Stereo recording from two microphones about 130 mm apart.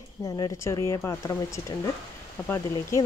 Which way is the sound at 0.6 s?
20° left (ahead or behind).